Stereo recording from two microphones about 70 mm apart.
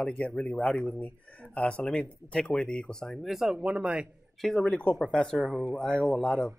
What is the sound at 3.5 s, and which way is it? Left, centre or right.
Speech, centre.